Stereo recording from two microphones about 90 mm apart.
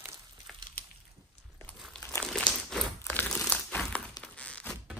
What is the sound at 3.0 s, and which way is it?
Crumpling, 25° left (ahead or behind).